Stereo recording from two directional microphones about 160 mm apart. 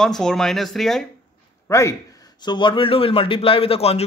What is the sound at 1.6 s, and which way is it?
A man's voice, 20° left (ahead or behind).